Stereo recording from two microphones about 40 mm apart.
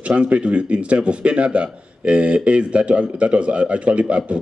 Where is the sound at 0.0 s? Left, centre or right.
Right.